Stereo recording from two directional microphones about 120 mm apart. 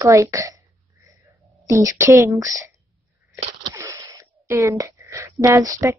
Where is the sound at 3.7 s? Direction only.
25° right (ahead or behind).